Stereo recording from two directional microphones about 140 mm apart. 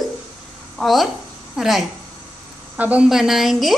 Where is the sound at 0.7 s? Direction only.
Centre (ahead or behind).